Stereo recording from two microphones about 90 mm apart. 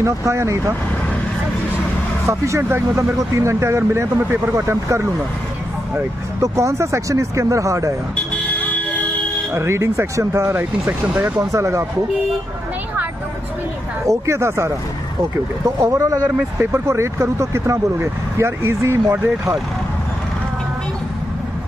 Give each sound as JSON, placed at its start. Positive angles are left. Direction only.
{"t": 0.0, "sound": "speech", "side_deg": -35}
{"t": 2.2, "sound": "speech", "side_deg": -35}
{"t": 9.5, "sound": "speech", "side_deg": -30}
{"t": 11.5, "sound": "speech", "side_deg": -35}
{"t": 14.0, "sound": "speech", "side_deg": -30}